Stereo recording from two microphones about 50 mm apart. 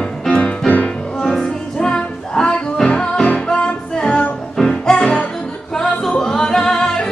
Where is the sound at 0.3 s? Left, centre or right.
Left.